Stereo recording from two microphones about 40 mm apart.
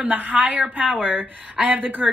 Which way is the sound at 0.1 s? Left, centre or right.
Right.